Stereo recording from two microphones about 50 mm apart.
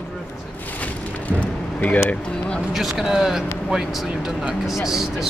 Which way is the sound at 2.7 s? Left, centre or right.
Centre.